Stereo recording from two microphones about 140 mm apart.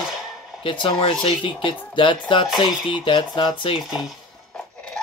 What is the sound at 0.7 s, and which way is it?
Speech, 35° left (ahead or behind).